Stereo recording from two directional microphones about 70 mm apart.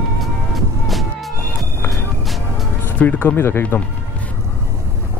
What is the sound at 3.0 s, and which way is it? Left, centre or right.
Speech, left.